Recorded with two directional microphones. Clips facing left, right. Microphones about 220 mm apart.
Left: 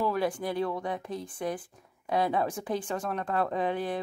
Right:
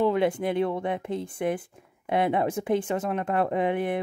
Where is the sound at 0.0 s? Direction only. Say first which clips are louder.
Right 6 dB; 25° right (ahead or behind).